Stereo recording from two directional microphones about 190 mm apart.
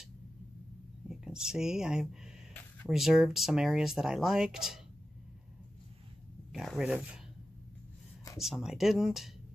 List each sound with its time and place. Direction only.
1.0 s speech: 5° right (ahead or behind)
6.5 s speech: centre (ahead or behind)
8.4 s speech: centre (ahead or behind)